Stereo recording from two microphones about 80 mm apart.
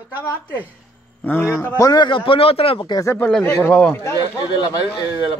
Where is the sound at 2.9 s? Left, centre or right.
Left.